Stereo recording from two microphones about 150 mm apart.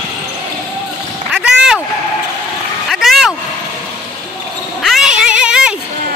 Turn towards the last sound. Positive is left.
turn(degrees=-5)  # may be behind; listen again after turning